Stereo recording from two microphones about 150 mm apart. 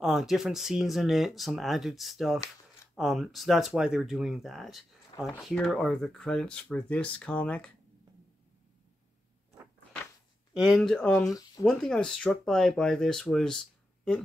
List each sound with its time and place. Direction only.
0.0 s speech: centre (ahead or behind)
10.5 s speech: centre (ahead or behind)
11.2 s speech: 25° left (ahead or behind)
11.6 s speech: 5° left (ahead or behind)